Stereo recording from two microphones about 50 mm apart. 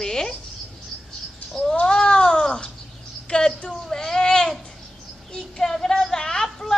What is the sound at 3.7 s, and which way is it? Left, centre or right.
A woman's voice, centre.